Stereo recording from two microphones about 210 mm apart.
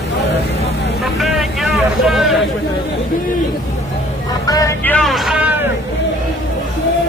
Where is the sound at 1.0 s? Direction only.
Centre (ahead or behind).